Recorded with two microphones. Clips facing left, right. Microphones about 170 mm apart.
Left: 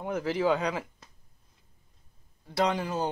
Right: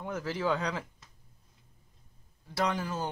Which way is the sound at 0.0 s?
15° left (ahead or behind).